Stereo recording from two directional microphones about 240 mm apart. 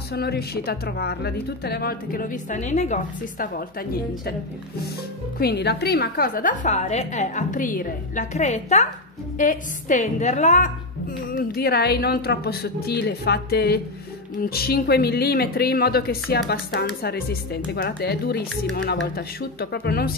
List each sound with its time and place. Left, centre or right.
0.1 s speech: left
5.4 s speech: left